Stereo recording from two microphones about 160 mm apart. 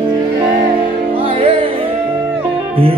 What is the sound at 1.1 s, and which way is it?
Music, 35° right (ahead or behind).